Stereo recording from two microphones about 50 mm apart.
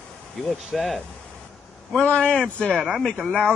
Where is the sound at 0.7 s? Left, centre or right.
Centre.